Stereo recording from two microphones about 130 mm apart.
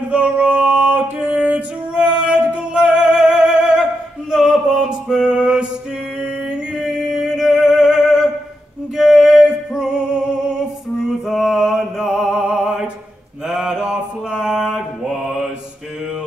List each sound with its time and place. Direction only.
0.1 s music: 10° right (ahead or behind)
6.2 s singing: 5° right (ahead or behind)
8.9 s music: 5° right (ahead or behind)
13.5 s mantra: 5° right (ahead or behind)